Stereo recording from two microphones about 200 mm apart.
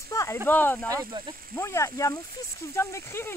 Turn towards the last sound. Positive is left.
turn(degrees=10)  # may be behind; listen again after turning